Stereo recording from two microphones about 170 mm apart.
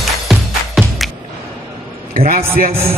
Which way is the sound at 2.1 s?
50° right (ahead or behind).